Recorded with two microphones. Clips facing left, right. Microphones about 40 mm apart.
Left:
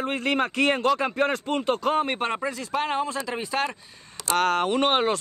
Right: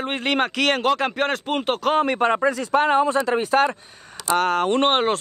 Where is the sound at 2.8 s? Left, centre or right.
Right.